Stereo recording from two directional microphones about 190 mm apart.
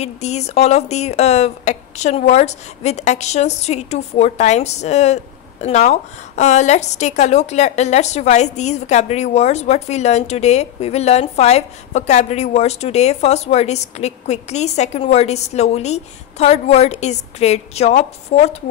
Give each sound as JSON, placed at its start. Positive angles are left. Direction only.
{"t": 0.0, "sound": "speech", "side_deg": 35}